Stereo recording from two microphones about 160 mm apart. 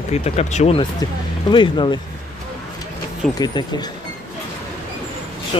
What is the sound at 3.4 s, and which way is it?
Speech, 25° left (ahead or behind).